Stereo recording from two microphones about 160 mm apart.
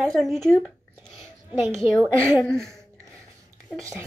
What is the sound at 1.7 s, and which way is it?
Speech, 5° left (ahead or behind).